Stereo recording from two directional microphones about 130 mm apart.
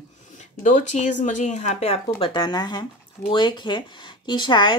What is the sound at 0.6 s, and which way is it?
Speech, 70° left (ahead or behind).